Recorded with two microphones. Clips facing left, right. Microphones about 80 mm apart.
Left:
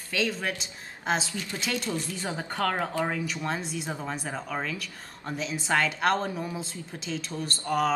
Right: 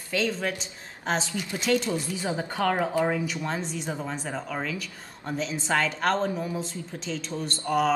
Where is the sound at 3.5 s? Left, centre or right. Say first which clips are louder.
Right 1 dB; centre.